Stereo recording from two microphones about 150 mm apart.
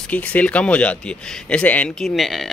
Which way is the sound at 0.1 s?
10° left (ahead or behind).